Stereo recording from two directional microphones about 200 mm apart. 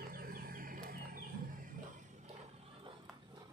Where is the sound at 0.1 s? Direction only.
45° right (ahead or behind).